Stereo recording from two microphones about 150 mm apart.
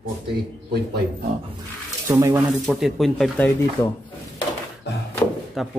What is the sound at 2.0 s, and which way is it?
Speech, 15° right (ahead or behind).